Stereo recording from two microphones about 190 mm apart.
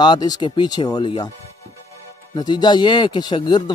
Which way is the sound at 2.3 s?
20° left (ahead or behind).